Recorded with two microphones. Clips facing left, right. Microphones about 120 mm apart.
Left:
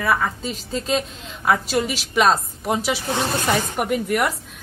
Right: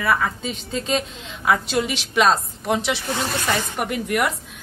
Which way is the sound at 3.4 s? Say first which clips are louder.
Left 2 dB; 5° left (ahead or behind).